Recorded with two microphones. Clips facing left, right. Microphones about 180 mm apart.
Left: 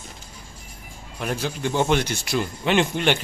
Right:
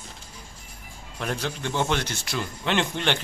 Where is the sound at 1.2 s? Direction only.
5° left (ahead or behind).